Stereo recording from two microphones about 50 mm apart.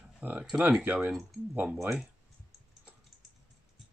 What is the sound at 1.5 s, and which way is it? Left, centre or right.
Speech, right.